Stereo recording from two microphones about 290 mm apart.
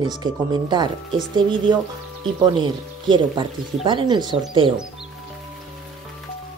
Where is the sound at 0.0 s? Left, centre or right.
Centre.